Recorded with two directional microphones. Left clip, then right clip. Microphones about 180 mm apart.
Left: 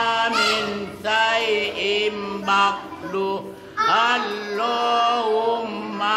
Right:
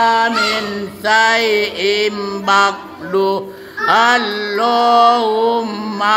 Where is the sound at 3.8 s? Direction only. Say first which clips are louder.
Right 7 dB; 45° right (ahead or behind).